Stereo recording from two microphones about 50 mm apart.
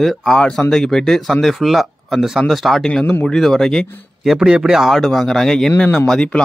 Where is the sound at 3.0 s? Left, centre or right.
Left.